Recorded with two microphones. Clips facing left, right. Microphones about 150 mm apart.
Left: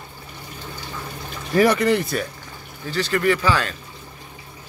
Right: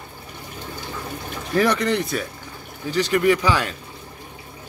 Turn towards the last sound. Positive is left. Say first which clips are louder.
# right 1 dB
turn(degrees=-15)  # may be behind; listen again after turning